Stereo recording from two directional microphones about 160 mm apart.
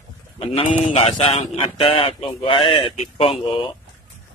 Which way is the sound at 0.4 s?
35° left (ahead or behind).